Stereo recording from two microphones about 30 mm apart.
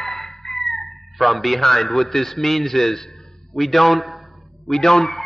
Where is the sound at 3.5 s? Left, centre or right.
Centre.